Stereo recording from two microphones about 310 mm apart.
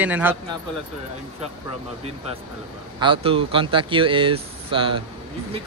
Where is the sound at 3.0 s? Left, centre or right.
Centre.